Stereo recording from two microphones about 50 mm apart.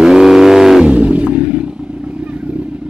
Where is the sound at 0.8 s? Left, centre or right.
Right.